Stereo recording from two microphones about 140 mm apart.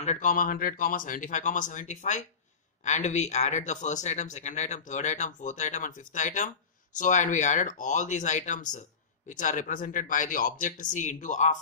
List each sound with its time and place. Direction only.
0.0 s speech: 60° left (ahead or behind)